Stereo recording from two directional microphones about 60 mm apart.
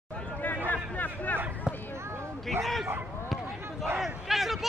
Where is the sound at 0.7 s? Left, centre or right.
Left.